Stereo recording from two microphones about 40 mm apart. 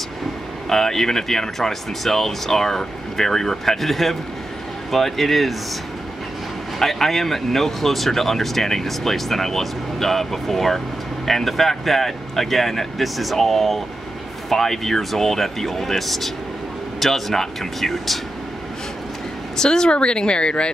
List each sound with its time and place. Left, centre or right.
0.7 s speech: centre
6.8 s speech: centre
19.5 s speech: centre